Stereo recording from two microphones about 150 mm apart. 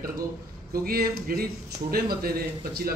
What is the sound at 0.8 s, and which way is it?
A man's voice, 80° right.